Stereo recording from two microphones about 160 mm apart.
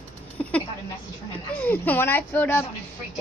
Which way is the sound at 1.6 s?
10° left (ahead or behind).